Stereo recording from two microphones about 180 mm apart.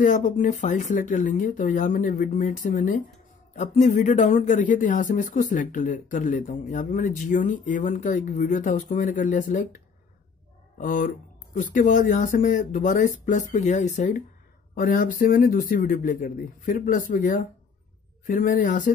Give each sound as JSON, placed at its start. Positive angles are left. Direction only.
{"t": 0.0, "sound": "speech", "side_deg": 45}
{"t": 10.8, "sound": "speech", "side_deg": 45}